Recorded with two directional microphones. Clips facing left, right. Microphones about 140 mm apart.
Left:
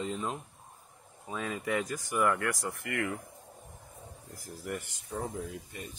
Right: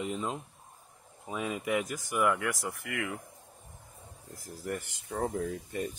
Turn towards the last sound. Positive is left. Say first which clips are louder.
# right 8 dB
turn(degrees=-45)  # may be behind; listen again after turning